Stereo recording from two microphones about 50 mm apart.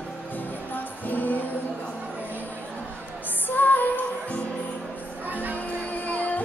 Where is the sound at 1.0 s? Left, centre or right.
Left.